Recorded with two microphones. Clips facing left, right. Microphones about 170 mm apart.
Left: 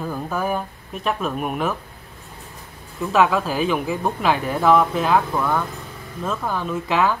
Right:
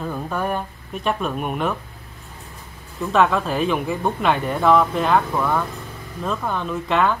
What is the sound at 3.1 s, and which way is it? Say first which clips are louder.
Speech: even; 5° left (ahead or behind).